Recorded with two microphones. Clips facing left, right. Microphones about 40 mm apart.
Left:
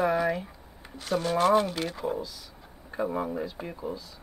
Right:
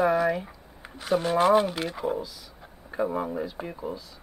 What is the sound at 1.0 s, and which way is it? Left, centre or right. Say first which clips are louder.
Speech: right 3 dB; centre.